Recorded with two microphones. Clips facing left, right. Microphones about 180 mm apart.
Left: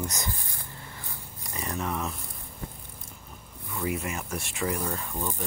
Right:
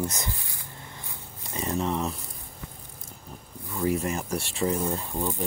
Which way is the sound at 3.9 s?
35° right (ahead or behind).